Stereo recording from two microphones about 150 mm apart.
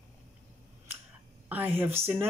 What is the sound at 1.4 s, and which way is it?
Speech, 15° right (ahead or behind).